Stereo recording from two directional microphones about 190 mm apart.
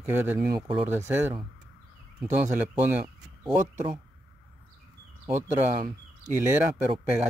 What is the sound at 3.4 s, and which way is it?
Speech, 5° right (ahead or behind).